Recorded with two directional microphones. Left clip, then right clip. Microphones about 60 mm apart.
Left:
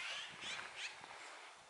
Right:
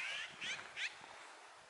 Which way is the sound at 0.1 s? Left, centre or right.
Right.